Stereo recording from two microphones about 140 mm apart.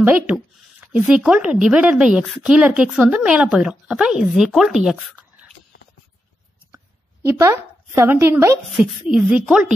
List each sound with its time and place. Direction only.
0.0 s speech: 10° right (ahead or behind)
7.2 s a woman's voice: 20° right (ahead or behind)
9.0 s speech: 5° right (ahead or behind)